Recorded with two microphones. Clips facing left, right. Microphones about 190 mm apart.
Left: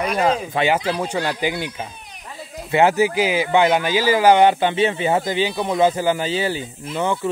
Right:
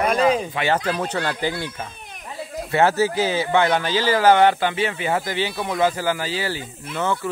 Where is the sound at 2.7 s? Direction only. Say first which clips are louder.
Left 2 dB; 15° left (ahead or behind).